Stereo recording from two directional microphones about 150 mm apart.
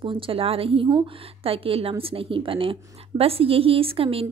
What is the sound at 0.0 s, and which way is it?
A woman's voice, 35° right (ahead or behind).